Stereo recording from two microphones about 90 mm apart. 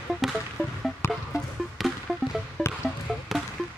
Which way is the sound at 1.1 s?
Centre (ahead or behind).